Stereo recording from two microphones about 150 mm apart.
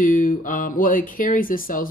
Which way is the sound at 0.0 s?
65° left (ahead or behind).